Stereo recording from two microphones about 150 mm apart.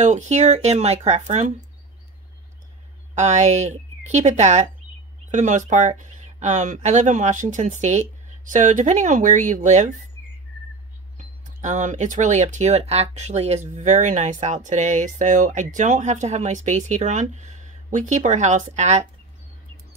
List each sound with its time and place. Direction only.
0.0 s speech: 50° right (ahead or behind)
3.2 s speech: 50° right (ahead or behind)
11.1 s speech: 55° right (ahead or behind)